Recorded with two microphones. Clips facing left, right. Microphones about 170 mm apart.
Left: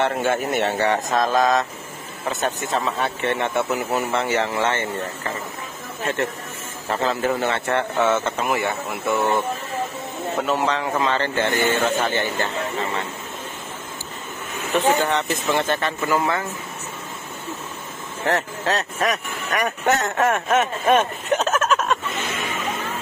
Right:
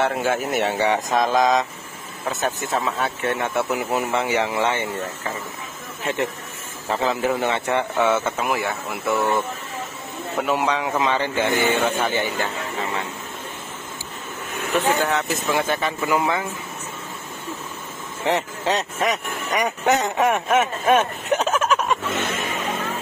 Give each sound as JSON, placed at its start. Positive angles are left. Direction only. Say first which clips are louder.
{"t": 0.0, "sound": "speech", "louder": "even", "side_deg": -5}
{"t": 2.2, "sound": "speech", "louder": "even", "side_deg": -5}
{"t": 6.0, "sound": "speech", "louder": "even", "side_deg": -10}
{"t": 10.4, "sound": "speech", "louder": "right 1 dB", "side_deg": -10}
{"t": 15.0, "sound": "speech", "louder": "left 1 dB", "side_deg": -5}
{"t": 18.2, "sound": "speech", "louder": "even", "side_deg": -15}